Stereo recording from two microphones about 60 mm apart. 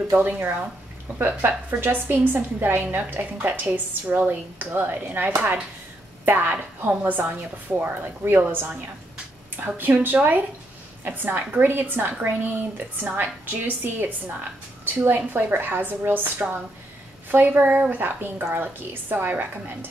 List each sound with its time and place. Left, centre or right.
0.2 s a woman's voice: right
1.7 s a woman's voice: right